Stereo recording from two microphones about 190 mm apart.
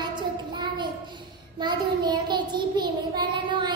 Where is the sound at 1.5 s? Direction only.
20° right (ahead or behind).